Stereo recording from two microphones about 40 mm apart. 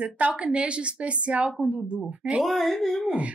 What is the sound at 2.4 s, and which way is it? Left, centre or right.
Speech, centre.